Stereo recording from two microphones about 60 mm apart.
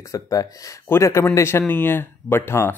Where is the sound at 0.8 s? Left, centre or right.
Left.